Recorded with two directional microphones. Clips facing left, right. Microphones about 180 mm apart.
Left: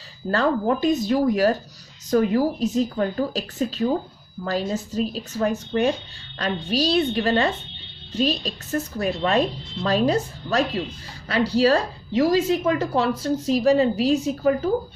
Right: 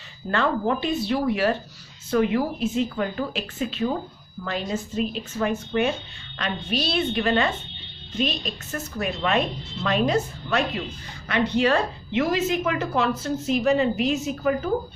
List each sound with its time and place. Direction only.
0.3 s speech: 40° left (ahead or behind)